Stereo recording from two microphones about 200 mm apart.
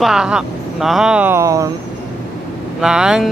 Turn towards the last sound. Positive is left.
turn(degrees=-5)  # may be behind; listen again after turning